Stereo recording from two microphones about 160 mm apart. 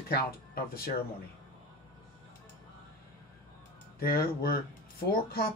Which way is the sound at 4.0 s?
70° left (ahead or behind).